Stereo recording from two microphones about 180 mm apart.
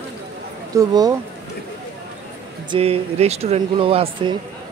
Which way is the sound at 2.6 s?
30° right (ahead or behind).